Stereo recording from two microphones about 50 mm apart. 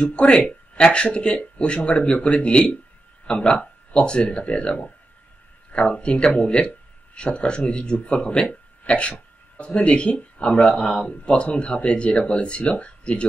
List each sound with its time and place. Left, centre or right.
0.0 s speech: left